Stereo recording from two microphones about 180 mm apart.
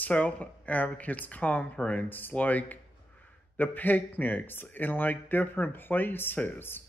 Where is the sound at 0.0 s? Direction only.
10° left (ahead or behind).